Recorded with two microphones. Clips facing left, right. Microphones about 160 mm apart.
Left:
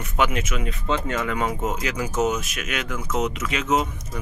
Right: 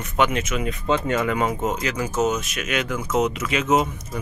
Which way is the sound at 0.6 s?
15° right (ahead or behind).